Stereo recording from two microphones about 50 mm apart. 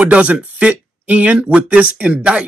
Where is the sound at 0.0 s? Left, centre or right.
Right.